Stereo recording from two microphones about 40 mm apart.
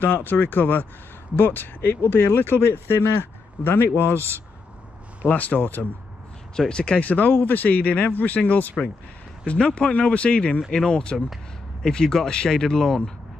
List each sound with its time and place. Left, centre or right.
0.0 s speech: left
5.3 s speech: left
5.6 s speech: left
6.5 s speech: centre
7.0 s speech: left
7.3 s speech: left
9.5 s speech: left